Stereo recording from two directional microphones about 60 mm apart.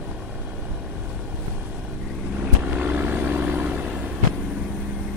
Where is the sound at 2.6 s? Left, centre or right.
Right.